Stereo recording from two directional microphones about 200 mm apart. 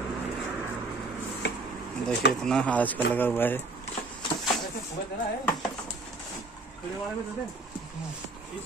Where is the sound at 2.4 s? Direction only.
5° left (ahead or behind).